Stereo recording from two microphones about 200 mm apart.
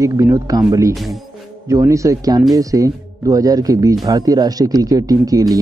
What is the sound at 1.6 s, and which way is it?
Speech, 15° right (ahead or behind).